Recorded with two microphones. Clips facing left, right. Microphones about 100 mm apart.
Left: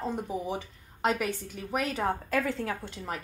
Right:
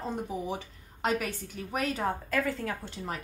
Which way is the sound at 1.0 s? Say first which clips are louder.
Left 2 dB; 15° left (ahead or behind).